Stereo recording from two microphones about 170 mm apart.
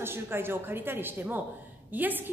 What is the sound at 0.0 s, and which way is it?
A woman's voice, 15° right (ahead or behind).